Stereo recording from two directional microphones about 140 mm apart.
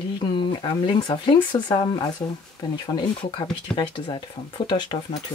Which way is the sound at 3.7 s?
35° left (ahead or behind).